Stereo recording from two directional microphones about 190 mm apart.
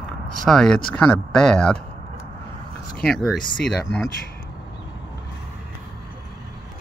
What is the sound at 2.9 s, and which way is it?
Speech, 5° left (ahead or behind).